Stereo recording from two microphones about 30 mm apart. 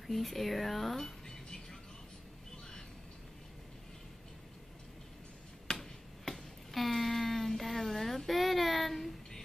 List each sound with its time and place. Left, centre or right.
0.0 s speech: centre
1.2 s music: centre
5.7 s finger snapping: centre
6.7 s a sound: centre
8.3 s child singing: centre